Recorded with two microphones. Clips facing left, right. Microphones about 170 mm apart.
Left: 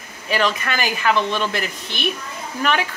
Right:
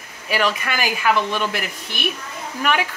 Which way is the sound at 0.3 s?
10° right (ahead or behind).